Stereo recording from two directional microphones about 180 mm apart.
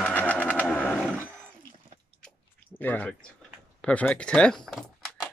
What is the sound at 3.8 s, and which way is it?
Speech, 5° left (ahead or behind).